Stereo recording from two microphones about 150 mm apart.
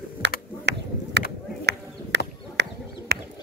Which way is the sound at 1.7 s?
90° right.